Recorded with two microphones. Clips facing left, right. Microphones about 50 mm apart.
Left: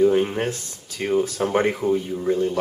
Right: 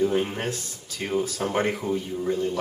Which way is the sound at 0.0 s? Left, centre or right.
Centre.